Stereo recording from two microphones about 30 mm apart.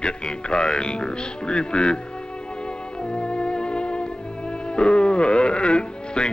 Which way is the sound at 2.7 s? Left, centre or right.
Left.